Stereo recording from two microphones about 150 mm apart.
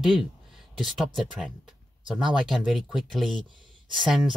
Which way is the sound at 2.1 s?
Centre (ahead or behind).